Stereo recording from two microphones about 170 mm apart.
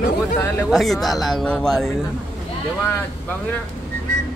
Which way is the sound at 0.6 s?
Centre (ahead or behind).